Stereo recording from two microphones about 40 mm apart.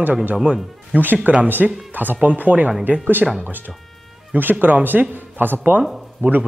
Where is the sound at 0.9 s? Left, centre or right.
Right.